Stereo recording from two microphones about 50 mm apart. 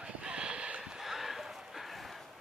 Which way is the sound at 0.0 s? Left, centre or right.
Right.